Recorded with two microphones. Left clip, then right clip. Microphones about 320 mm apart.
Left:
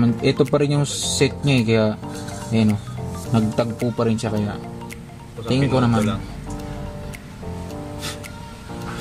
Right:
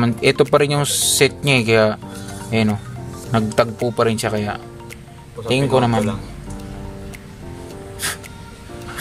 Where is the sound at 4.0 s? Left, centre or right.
Right.